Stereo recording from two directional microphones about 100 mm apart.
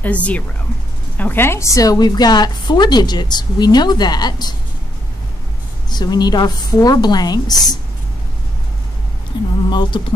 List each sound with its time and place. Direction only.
0.0 s a woman's voice: 15° left (ahead or behind); by 4.6 s 45° left (ahead or behind)
5.9 s a woman's voice: 45° left (ahead or behind)
9.3 s a woman's voice: 50° left (ahead or behind)